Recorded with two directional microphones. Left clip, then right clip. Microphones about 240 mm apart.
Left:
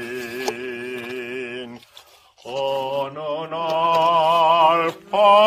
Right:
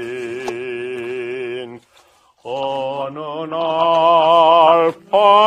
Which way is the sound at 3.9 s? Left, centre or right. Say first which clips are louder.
Right 5 dB; right.